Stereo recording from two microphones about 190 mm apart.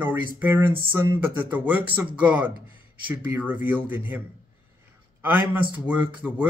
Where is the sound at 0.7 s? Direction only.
25° right (ahead or behind).